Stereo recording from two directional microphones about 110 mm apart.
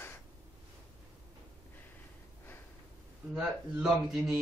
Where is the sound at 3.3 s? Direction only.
5° right (ahead or behind).